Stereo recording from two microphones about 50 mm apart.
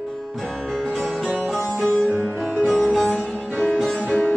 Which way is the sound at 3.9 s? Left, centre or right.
Centre.